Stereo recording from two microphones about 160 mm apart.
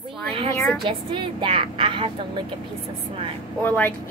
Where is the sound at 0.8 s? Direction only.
30° right (ahead or behind).